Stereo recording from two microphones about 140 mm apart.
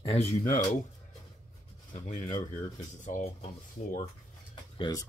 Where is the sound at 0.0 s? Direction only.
45° left (ahead or behind).